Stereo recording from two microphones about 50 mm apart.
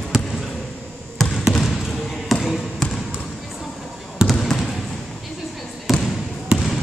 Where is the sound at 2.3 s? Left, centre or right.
Centre.